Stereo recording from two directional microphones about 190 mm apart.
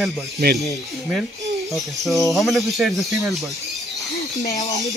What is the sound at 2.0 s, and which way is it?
Speech, centre (ahead or behind).